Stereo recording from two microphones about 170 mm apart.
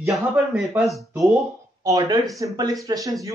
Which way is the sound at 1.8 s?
20° right (ahead or behind).